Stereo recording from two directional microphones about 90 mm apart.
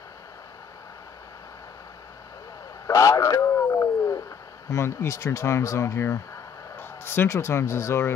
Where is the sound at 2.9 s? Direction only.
35° left (ahead or behind).